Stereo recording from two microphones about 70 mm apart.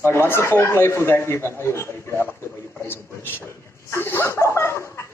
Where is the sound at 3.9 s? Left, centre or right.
Left.